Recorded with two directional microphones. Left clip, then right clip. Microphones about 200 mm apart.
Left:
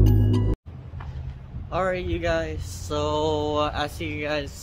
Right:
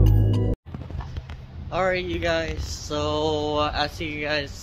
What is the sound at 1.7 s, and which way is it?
Speech, 5° left (ahead or behind).